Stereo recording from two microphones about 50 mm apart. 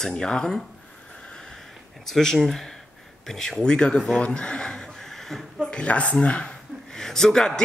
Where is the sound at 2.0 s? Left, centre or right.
Centre.